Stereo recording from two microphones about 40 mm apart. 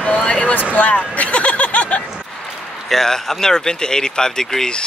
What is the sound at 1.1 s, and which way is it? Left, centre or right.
Music, left.